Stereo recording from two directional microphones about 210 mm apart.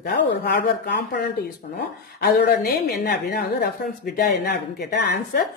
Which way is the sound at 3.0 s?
50° left (ahead or behind).